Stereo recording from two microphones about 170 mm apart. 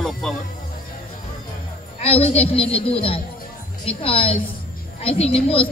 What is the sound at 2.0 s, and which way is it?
A woman's voice, 35° left (ahead or behind).